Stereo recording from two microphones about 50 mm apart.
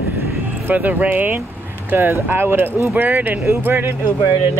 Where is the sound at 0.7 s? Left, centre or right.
Right.